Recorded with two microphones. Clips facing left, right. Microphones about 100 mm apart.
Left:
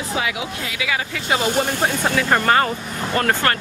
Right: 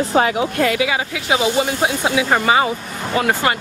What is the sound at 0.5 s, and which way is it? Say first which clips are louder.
Speech: right 12 dB; 55° right (ahead or behind).